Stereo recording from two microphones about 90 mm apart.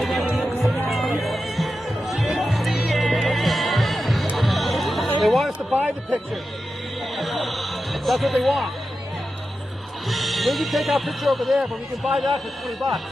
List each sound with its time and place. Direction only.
0.0 s music: centre (ahead or behind)
5.7 s a sound: 20° right (ahead or behind)
7.2 s music: centre (ahead or behind)
10.0 s speech: centre (ahead or behind)